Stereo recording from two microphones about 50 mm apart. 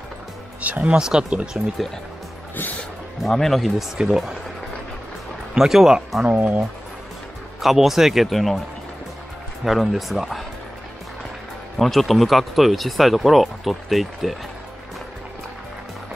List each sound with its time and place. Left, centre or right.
0.6 s speech: right
0.9 s speech: centre
3.2 s speech: centre
4.0 s speech: centre
5.5 s speech: centre
6.3 s speech: right
7.6 s speech: centre
9.7 s speech: centre
11.7 s speech: centre